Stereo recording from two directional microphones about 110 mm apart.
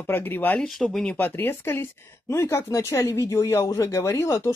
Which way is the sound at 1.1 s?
20° left (ahead or behind).